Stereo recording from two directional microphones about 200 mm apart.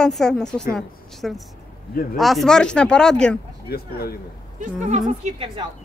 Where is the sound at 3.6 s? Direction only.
50° left (ahead or behind).